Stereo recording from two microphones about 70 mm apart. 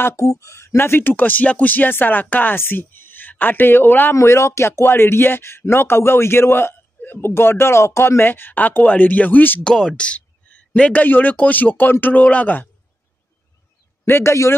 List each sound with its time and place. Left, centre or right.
0.0 s speech: left
4.1 s speech: left
9.6 s speech: centre
14.0 s speech: left